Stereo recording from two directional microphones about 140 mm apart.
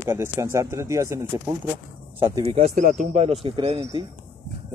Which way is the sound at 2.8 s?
65° right (ahead or behind).